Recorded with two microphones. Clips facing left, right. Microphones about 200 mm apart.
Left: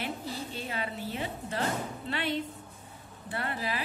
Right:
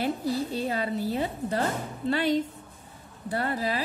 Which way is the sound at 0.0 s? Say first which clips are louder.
Right 9 dB; 40° right (ahead or behind).